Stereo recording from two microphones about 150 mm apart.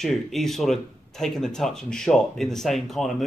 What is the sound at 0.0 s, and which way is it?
Speech, centre (ahead or behind).